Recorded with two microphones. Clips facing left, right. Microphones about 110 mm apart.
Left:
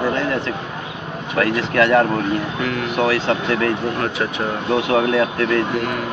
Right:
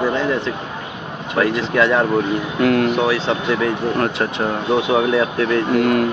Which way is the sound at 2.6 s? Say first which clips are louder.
Right 7 dB; 55° right (ahead or behind).